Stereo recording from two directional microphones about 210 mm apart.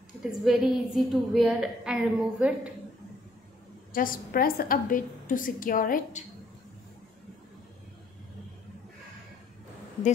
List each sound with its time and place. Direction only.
0.2 s a woman's voice: centre (ahead or behind)
3.9 s a woman's voice: 40° left (ahead or behind)